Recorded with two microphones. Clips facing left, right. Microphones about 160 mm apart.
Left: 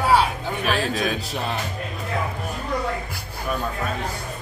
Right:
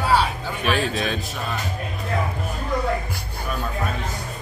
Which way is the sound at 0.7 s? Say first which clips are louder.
Right 1 dB; centre (ahead or behind).